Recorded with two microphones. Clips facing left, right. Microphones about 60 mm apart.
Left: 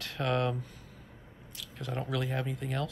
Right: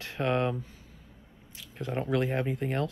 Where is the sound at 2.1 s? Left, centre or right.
Right.